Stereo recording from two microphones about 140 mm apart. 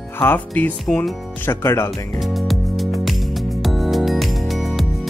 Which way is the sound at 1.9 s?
Centre (ahead or behind).